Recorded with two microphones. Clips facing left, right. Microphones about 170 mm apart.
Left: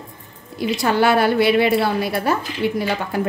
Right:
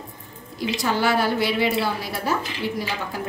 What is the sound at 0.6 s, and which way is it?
A woman's voice, 65° left (ahead or behind).